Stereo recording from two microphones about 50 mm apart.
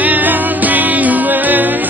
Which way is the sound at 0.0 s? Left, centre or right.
Right.